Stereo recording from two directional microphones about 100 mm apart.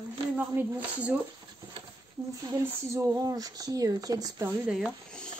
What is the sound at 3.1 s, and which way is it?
Speech, 35° right (ahead or behind).